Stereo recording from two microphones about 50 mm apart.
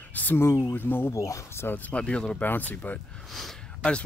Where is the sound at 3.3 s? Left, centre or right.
Centre.